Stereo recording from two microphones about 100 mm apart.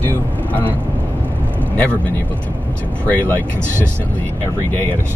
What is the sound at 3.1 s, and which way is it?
Speech, 15° left (ahead or behind).